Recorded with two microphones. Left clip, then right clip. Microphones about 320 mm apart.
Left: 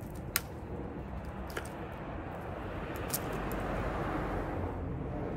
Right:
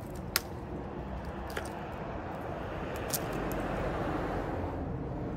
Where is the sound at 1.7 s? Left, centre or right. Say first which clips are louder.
Right 3 dB; right.